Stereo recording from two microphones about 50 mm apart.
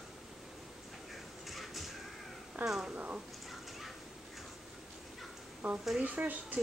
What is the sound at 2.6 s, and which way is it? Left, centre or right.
Speech, centre.